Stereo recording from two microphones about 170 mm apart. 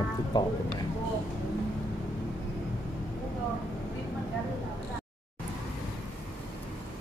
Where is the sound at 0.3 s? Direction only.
25° left (ahead or behind).